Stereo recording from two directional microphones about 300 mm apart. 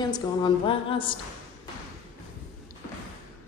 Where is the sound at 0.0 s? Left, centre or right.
Centre.